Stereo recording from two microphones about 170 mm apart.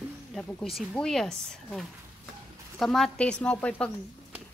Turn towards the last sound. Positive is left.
turn(degrees=5)  # may be behind; listen again after turning